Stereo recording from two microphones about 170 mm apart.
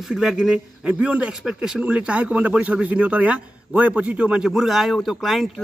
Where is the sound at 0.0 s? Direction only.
5° right (ahead or behind).